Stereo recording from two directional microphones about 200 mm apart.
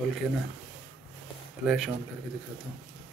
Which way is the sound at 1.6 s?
Centre (ahead or behind).